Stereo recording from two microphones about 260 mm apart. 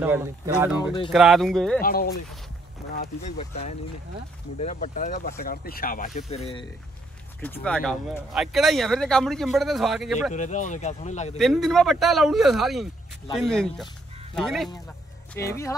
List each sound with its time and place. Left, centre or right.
0.0 s speech: centre
1.8 s speech: left
7.3 s speech: centre
10.3 s speech: left
11.3 s speech: centre